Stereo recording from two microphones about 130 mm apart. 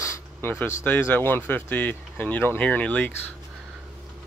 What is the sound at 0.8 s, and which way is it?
Speech, 15° left (ahead or behind).